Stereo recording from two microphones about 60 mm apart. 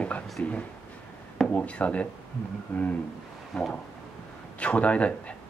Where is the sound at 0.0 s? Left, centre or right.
Left.